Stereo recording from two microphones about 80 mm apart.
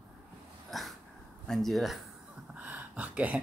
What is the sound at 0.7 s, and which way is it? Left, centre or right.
Dog, centre.